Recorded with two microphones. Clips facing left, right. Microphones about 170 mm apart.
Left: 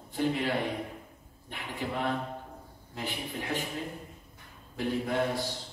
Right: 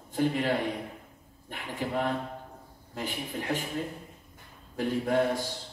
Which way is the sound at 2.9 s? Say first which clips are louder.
Right 2 dB; 45° right (ahead or behind).